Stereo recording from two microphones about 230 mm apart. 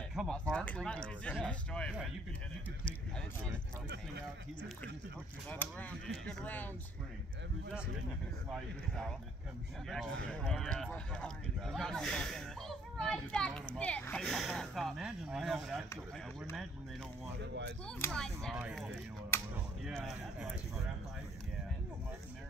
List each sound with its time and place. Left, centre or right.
0.1 s speech: centre
5.5 s speech: centre
10.4 s speech: centre
17.4 s speech: right
17.8 s speech: centre